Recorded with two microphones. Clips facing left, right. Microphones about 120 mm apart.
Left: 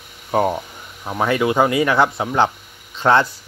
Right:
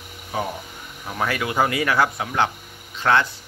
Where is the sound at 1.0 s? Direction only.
25° left (ahead or behind).